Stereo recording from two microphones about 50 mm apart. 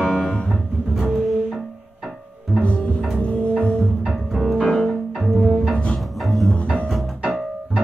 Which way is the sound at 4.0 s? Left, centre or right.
Centre.